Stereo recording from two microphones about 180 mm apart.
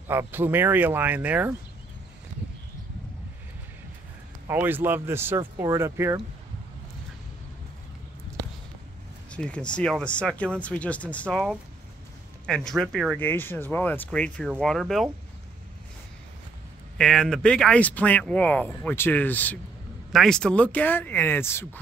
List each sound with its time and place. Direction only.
0.1 s speech: 10° right (ahead or behind)
4.5 s speech: 10° right (ahead or behind)
9.3 s speech: 5° left (ahead or behind)
17.0 s speech: 5° left (ahead or behind)